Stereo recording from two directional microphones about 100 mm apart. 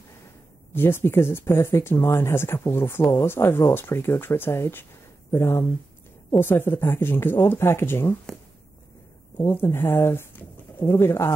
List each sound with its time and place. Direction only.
0.7 s speech: 20° left (ahead or behind)
9.4 s speech: 25° left (ahead or behind)